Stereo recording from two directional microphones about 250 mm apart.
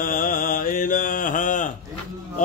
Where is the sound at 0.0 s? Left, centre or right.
Left.